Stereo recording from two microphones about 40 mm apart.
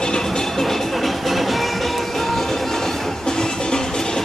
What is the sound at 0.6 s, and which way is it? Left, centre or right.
Music, centre.